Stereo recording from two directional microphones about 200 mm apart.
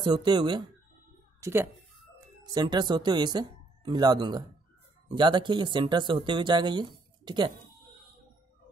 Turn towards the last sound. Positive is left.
turn(degrees=-20)  # may be behind; listen again after turning